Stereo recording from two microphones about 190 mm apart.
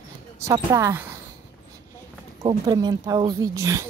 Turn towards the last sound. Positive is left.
turn(degrees=-15)  # may be behind; listen again after turning